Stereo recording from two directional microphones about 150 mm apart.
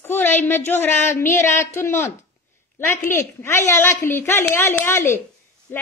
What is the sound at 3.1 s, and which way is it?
A woman's voice, 15° left (ahead or behind).